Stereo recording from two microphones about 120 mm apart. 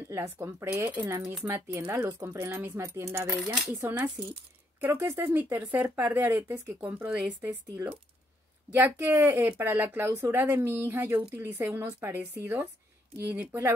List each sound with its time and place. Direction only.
0.1 s speech: 20° right (ahead or behind)